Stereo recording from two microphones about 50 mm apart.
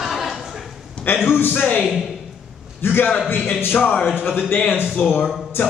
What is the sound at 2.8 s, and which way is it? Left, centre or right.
Speech, left.